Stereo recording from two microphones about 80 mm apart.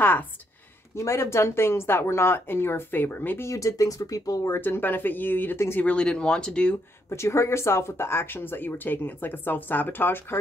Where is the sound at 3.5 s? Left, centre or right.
Left.